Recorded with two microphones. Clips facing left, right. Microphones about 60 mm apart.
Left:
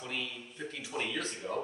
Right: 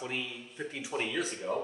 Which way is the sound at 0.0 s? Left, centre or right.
Centre.